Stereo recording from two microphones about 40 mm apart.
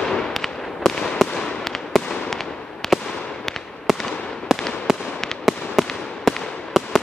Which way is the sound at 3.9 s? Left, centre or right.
Centre.